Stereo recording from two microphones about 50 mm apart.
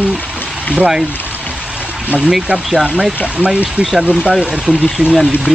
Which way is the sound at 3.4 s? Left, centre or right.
Right.